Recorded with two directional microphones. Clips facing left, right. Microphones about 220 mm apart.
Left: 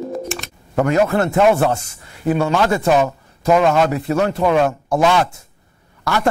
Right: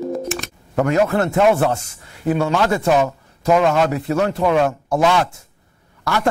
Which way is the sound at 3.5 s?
25° left (ahead or behind).